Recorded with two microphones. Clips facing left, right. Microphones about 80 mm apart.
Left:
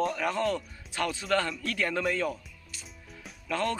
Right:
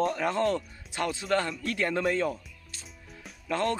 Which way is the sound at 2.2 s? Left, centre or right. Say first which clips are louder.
Right 2 dB; right.